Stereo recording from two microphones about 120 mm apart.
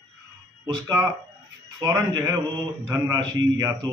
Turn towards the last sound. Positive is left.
turn(degrees=-30)  # may be behind; listen again after turning